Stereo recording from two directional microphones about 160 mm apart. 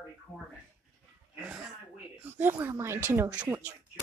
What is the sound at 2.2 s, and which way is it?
Speech, 10° right (ahead or behind).